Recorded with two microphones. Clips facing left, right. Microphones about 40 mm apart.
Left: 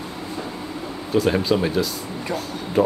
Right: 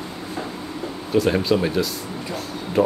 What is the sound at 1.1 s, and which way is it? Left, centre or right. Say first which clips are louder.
Speech: even; centre.